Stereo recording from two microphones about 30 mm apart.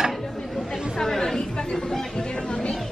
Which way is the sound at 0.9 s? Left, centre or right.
Centre.